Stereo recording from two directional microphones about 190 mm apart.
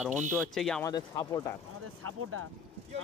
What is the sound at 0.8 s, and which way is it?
Speech, 20° left (ahead or behind).